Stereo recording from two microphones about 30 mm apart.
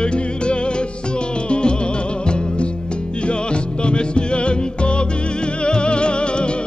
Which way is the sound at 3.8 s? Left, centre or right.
Left.